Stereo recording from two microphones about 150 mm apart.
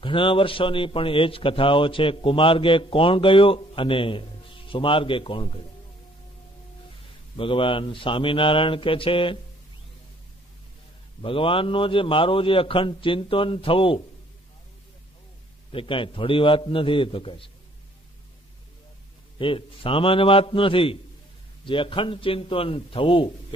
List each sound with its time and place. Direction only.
0.0 s a man's voice: 35° left (ahead or behind)
7.3 s a man's voice: 35° left (ahead or behind)
11.2 s a man's voice: 35° left (ahead or behind)
15.7 s a man's voice: 35° left (ahead or behind)
19.3 s a man's voice: 35° left (ahead or behind)